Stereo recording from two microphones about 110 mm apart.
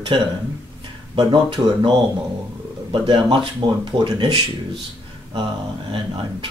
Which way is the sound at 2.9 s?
50° right (ahead or behind).